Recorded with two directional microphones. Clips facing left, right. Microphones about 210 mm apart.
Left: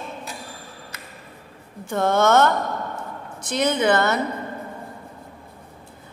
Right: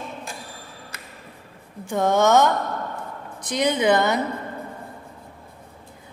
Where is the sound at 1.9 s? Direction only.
15° right (ahead or behind).